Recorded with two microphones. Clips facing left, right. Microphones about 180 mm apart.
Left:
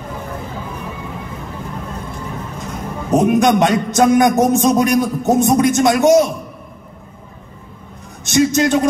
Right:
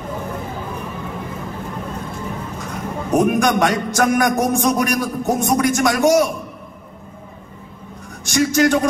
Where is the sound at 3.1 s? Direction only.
20° left (ahead or behind).